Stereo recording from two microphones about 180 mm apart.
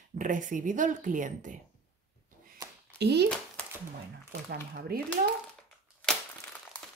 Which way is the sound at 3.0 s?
65° right (ahead or behind).